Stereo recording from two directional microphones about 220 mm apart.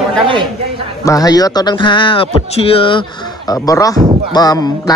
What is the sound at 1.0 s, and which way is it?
A man's voice, 15° left (ahead or behind).